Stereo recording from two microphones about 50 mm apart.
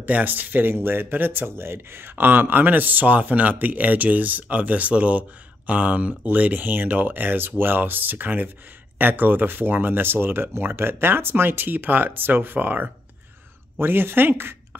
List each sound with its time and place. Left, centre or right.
0.0 s speech: right
13.7 s speech: right